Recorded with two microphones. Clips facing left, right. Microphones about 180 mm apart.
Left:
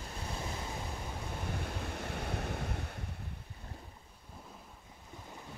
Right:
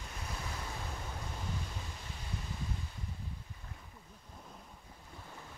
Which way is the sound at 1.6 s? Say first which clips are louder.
Left 7 dB; 65° left (ahead or behind).